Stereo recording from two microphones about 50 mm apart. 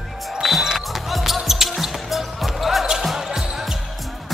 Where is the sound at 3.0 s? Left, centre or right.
Centre.